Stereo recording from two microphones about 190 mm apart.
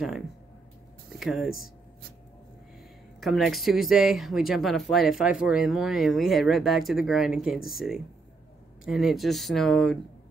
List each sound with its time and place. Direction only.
1.2 s speech: centre (ahead or behind)
3.2 s speech: centre (ahead or behind)